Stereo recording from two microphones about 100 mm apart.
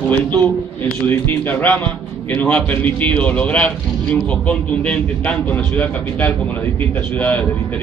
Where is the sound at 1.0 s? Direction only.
20° left (ahead or behind).